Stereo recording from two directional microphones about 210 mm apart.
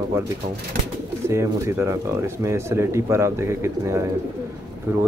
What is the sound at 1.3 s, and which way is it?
Speech, 15° right (ahead or behind).